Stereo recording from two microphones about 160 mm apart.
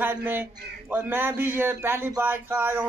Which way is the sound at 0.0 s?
10° right (ahead or behind).